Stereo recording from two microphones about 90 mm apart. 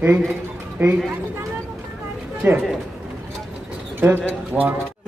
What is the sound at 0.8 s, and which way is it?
Speech, 30° right (ahead or behind).